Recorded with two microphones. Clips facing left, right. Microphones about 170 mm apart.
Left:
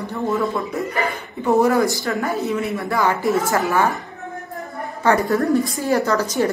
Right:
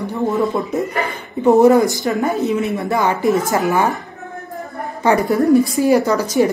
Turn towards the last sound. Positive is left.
turn(degrees=-10)  # may be behind; listen again after turning